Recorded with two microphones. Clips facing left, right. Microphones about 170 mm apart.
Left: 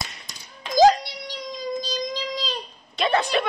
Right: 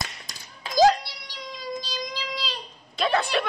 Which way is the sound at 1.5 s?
45° left (ahead or behind).